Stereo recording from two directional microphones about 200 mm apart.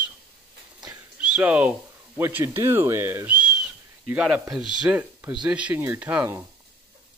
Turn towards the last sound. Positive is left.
turn(degrees=-10)  # may be behind; listen again after turning